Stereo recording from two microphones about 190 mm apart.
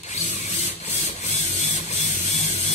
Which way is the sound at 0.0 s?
35° left (ahead or behind).